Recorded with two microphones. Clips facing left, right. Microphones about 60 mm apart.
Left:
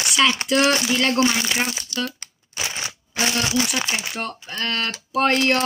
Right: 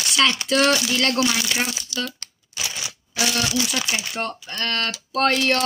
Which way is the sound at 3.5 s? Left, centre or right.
Left.